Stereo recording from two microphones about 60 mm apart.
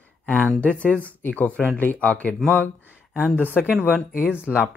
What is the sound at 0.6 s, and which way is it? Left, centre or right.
Speech, left.